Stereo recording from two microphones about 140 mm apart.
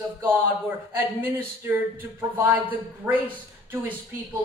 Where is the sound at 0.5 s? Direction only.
15° right (ahead or behind).